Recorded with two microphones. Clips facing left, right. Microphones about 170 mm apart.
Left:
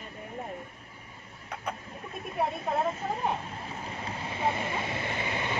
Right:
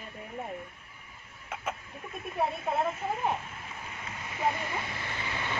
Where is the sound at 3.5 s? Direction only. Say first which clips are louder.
Left 5 dB; 35° left (ahead or behind).